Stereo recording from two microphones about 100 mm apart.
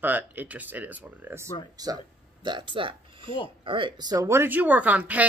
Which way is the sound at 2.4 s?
55° right (ahead or behind).